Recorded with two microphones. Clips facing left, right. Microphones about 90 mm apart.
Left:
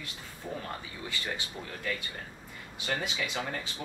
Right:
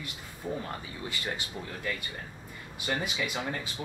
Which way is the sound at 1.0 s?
15° right (ahead or behind).